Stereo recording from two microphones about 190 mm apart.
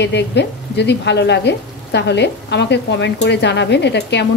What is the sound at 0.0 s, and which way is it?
Speech, 65° left (ahead or behind).